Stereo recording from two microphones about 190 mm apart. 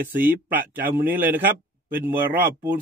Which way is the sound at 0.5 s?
10° right (ahead or behind).